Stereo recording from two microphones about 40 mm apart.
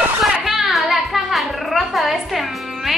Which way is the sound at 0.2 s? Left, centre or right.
Centre.